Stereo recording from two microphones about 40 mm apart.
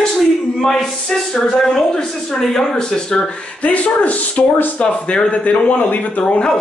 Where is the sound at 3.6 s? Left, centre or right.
Left.